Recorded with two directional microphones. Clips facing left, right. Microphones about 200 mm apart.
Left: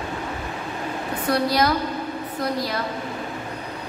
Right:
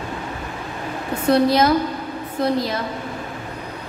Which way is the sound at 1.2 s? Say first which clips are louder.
Right 5 dB; 25° right (ahead or behind).